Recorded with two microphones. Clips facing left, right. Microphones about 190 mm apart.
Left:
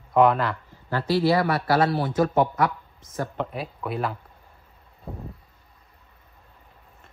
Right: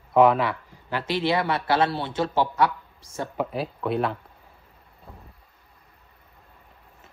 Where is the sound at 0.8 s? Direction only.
20° right (ahead or behind).